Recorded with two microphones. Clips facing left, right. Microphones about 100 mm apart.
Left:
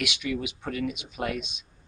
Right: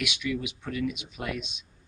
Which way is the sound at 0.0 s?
80° left.